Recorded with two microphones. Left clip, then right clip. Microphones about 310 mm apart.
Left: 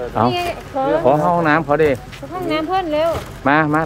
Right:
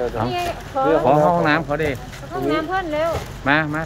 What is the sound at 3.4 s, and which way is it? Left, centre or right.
Speech, centre.